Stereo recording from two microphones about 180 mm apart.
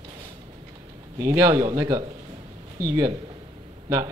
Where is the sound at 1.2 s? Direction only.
20° right (ahead or behind).